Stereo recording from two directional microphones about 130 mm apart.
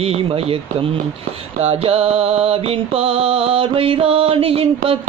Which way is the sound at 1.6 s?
50° right (ahead or behind).